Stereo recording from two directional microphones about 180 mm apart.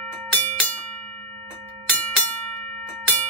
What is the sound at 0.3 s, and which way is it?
Music, 5° left (ahead or behind).